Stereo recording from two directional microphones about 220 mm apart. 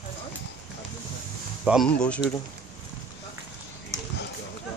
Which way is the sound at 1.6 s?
Centre (ahead or behind).